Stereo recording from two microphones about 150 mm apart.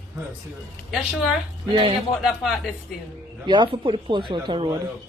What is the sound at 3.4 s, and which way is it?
Speech, 30° right (ahead or behind).